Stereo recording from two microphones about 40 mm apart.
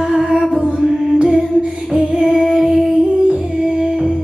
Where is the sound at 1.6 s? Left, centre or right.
Right.